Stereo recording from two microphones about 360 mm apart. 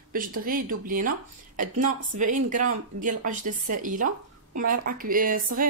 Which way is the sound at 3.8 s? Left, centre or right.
Right.